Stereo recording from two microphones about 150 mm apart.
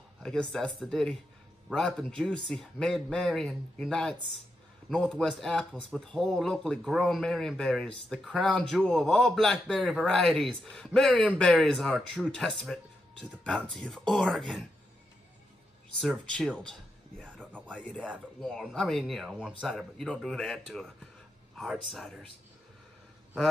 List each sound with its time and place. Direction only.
0.5 s speech: 5° left (ahead or behind)
16.0 s speech: 5° left (ahead or behind)
18.0 s speech: 10° right (ahead or behind)
18.5 s speech: 5° left (ahead or behind)